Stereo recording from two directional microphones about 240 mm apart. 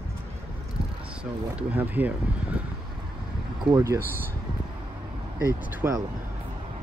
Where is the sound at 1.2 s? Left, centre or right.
Centre.